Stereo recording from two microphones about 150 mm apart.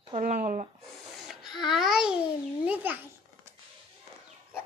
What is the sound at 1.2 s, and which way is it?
Babbling, centre (ahead or behind).